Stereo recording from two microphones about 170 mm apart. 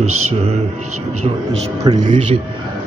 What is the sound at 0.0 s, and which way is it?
Music, 40° right (ahead or behind).